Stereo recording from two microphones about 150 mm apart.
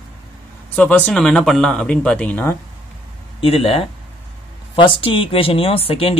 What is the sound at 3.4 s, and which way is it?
Speech, 40° left (ahead or behind).